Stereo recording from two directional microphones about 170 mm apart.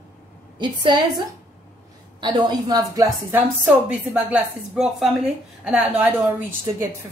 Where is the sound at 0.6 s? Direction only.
25° right (ahead or behind).